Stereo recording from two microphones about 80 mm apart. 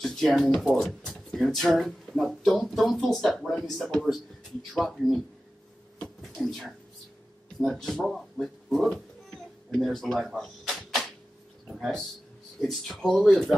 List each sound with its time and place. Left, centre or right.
0.0 s speech: centre
6.2 s speech: centre
10.1 s a sound: centre
12.5 s speech: centre